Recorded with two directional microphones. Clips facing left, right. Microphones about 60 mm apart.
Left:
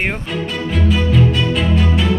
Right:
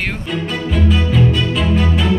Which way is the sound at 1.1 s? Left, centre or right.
Centre.